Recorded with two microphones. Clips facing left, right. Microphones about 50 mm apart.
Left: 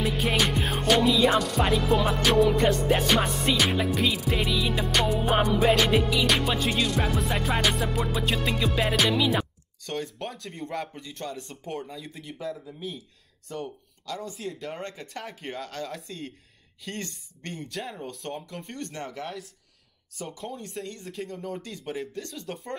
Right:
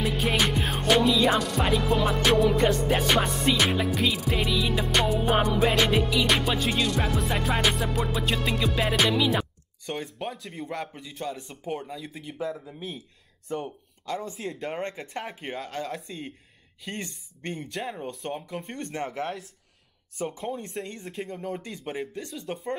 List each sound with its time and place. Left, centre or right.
0.0 s music: centre
12.4 s speech: centre